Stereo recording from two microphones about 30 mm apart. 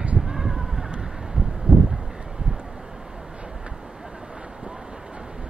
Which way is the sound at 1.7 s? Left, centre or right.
Right.